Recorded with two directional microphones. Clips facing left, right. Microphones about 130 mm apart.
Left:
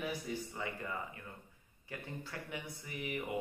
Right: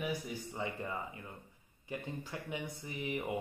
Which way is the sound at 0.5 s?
25° right (ahead or behind).